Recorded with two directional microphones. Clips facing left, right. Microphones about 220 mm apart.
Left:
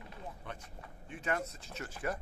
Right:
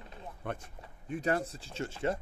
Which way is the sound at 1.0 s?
40° right (ahead or behind).